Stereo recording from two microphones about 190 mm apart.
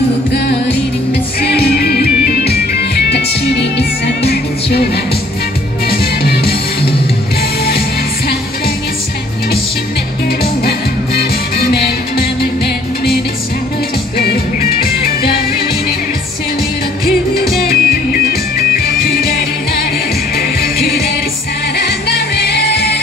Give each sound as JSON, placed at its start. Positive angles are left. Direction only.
{"t": 0.3, "sound": "music", "side_deg": 65}
{"t": 11.1, "sound": "music", "side_deg": 55}
{"t": 17.6, "sound": "music", "side_deg": 55}